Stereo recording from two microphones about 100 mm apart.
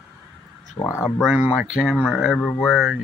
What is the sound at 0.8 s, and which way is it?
Speech, 25° left (ahead or behind).